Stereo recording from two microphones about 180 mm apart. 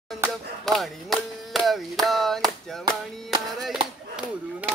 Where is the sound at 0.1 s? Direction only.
Centre (ahead or behind).